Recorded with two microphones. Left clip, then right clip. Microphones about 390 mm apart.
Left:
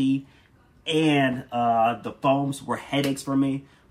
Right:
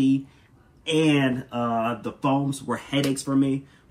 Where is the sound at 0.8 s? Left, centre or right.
Centre.